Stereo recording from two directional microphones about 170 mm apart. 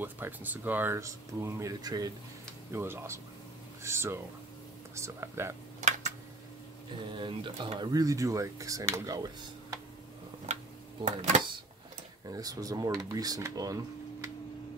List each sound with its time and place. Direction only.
0.0 s speech: 10° right (ahead or behind)
5.8 s a sound: 45° right (ahead or behind)
7.2 s speech: 30° right (ahead or behind)
11.1 s speech: 45° right (ahead or behind)
12.3 s speech: 20° right (ahead or behind)